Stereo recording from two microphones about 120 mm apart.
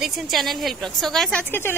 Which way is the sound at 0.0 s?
Centre (ahead or behind).